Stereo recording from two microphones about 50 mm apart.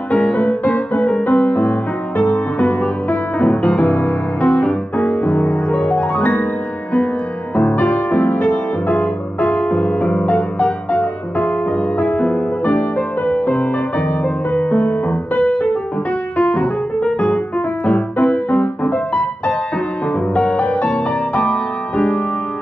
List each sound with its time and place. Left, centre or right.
0.1 s music: left
7.5 s music: left
17.0 s music: centre
17.8 s music: left
20.5 s music: left